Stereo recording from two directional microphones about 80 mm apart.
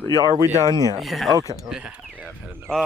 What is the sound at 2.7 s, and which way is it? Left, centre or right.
Speech, centre.